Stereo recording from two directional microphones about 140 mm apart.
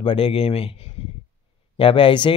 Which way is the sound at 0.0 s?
40° left (ahead or behind).